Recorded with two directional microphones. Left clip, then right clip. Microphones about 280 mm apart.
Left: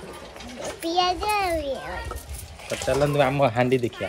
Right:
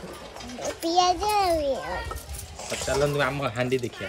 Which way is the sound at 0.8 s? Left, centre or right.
Centre.